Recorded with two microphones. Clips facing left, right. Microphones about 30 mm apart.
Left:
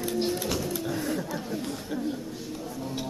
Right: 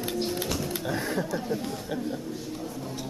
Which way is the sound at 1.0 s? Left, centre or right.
Right.